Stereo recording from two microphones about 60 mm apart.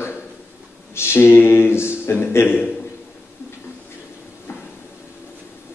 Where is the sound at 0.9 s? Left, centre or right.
Left.